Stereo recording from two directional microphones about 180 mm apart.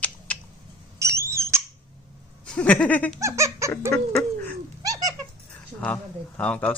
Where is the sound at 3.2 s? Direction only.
15° right (ahead or behind).